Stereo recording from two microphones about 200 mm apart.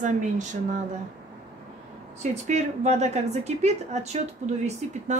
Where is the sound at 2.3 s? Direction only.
35° right (ahead or behind).